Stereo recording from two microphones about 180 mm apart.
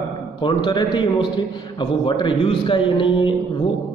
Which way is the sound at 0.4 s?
25° left (ahead or behind).